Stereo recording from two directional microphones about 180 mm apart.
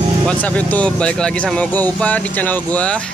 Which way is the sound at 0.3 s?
10° left (ahead or behind).